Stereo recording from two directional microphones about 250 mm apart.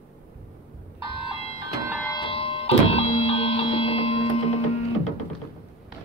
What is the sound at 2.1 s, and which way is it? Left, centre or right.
Music, left.